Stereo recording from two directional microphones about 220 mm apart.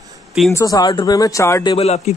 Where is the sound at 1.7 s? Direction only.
30° left (ahead or behind).